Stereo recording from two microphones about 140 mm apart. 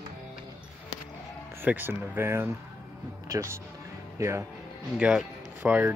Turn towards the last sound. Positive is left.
turn(degrees=-10)  # may be behind; listen again after turning